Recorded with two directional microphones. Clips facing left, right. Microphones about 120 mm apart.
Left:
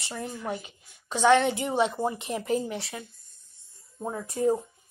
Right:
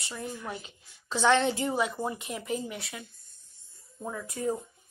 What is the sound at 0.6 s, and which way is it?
A woman's voice, 15° left (ahead or behind).